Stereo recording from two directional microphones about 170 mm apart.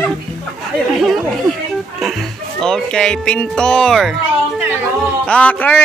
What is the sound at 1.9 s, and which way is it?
Speech, centre (ahead or behind).